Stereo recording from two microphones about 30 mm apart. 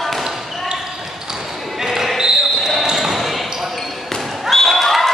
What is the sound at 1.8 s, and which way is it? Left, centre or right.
Basketball bounce, centre.